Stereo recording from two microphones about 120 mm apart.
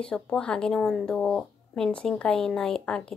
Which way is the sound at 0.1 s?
10° left (ahead or behind).